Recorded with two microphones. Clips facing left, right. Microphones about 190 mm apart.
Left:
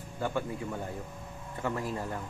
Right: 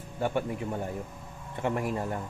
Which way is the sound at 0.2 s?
20° right (ahead or behind).